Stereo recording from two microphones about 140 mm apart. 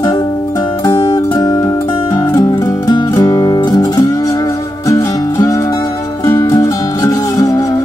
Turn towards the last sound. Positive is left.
turn(degrees=25)  # may be behind; listen again after turning